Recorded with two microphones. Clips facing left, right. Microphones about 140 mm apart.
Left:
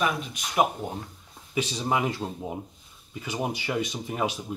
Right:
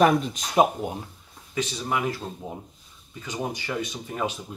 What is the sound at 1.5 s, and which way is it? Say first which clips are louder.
Speech: left 1 dB; 20° left (ahead or behind).